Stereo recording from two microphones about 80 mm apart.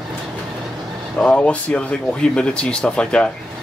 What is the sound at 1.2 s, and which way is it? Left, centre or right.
Speech, centre.